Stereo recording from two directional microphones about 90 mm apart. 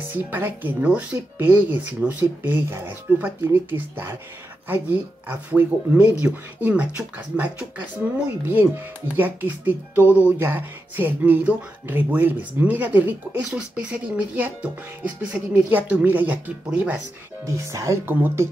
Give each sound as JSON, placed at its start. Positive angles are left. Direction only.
{"t": 0.1, "sound": "speech", "side_deg": -20}
{"t": 17.5, "sound": "speech", "side_deg": -35}